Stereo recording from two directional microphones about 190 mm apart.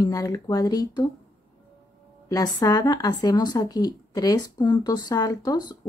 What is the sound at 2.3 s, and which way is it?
Speech, 20° left (ahead or behind).